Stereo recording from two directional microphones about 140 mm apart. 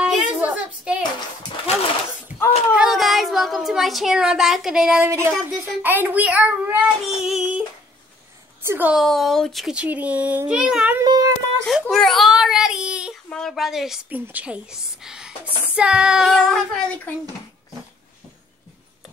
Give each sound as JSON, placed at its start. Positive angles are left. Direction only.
{"t": 0.0, "sound": "a sound", "side_deg": -5}
{"t": 2.7, "sound": "speech", "side_deg": -5}
{"t": 5.0, "sound": "a child's voice", "side_deg": -20}
{"t": 8.6, "sound": "a child's voice", "side_deg": -15}
{"t": 8.9, "sound": "a child's voice", "side_deg": 0}
{"t": 11.0, "sound": "speech", "side_deg": -25}
{"t": 11.6, "sound": "a child's voice", "side_deg": 0}